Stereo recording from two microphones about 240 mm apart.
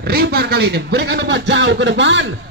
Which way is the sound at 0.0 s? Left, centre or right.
Right.